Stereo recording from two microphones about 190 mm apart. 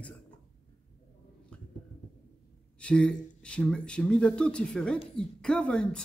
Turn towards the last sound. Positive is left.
turn(degrees=5)  # may be behind; listen again after turning